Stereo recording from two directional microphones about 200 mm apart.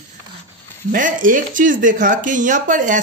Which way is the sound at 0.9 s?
40° right (ahead or behind).